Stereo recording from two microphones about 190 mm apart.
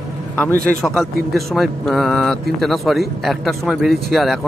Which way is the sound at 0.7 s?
Centre (ahead or behind).